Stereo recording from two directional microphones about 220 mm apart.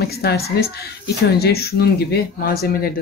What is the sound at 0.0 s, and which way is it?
Speech, 45° left (ahead or behind).